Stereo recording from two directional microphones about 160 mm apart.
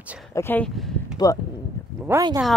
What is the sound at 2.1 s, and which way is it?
Speech, 15° right (ahead or behind).